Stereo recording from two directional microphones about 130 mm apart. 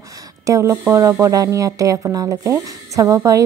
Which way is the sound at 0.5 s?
20° right (ahead or behind).